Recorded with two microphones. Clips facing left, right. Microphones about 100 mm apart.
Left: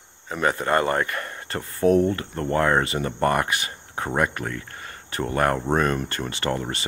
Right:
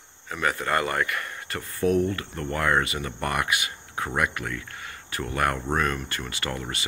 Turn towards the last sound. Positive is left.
turn(degrees=35)  # may be behind; listen again after turning